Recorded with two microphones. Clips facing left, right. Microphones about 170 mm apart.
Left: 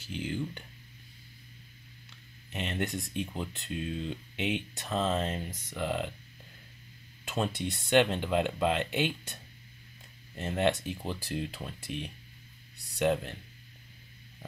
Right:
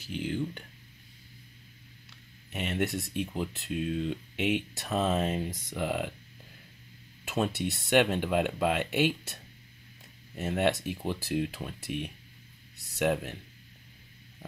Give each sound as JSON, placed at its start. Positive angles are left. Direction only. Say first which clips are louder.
{"t": 0.1, "sound": "speech", "louder": "right 2 dB", "side_deg": 0}
{"t": 2.0, "sound": "speech", "louder": "even", "side_deg": -5}
{"t": 7.2, "sound": "speech", "louder": "right 2 dB", "side_deg": -5}